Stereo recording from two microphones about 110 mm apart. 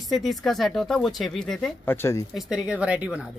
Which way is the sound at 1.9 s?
25° left (ahead or behind).